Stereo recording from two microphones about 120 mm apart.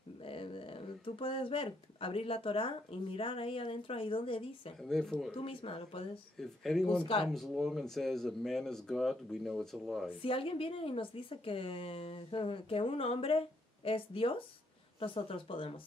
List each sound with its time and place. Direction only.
0.2 s speech: 50° left (ahead or behind)
4.8 s speech: 5° left (ahead or behind)
5.4 s speech: 50° left (ahead or behind)
6.3 s speech: centre (ahead or behind)
10.2 s speech: 50° left (ahead or behind)